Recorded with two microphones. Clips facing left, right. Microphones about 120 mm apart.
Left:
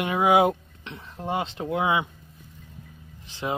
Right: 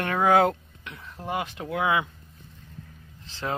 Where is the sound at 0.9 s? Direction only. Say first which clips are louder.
Left 2 dB; 25° left (ahead or behind).